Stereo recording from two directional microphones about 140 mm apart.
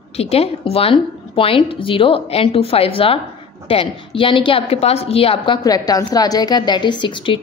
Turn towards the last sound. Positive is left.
turn(degrees=35)  # may be behind; listen again after turning